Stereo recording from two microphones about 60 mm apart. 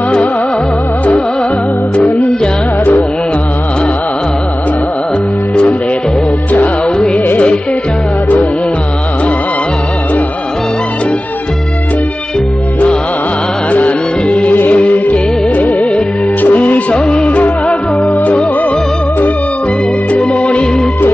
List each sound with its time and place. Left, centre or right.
2.8 s music: left
7.2 s music: left
13.7 s music: left
14.5 s music: left
16.9 s music: centre
20.4 s music: centre